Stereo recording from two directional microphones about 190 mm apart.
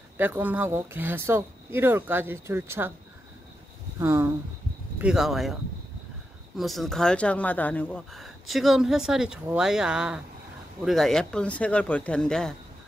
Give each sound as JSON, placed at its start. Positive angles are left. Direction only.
{"t": 0.2, "sound": "speech", "side_deg": -10}
{"t": 4.0, "sound": "speech", "side_deg": -15}